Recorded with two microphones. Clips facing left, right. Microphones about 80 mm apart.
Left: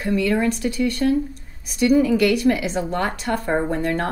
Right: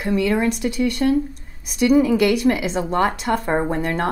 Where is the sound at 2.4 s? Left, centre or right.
Centre.